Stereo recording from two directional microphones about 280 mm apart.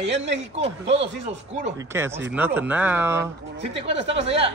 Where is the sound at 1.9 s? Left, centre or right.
Centre.